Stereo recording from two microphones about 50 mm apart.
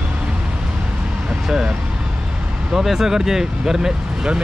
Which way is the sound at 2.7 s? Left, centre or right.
Centre.